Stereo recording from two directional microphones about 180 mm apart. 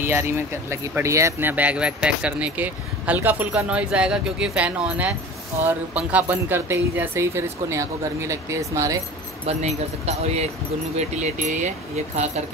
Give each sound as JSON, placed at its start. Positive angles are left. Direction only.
{"t": 0.0, "sound": "speech", "side_deg": -15}
{"t": 9.5, "sound": "speech", "side_deg": -35}